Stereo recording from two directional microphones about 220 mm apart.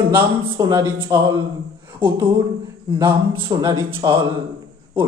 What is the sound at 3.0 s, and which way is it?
Speech, 20° right (ahead or behind).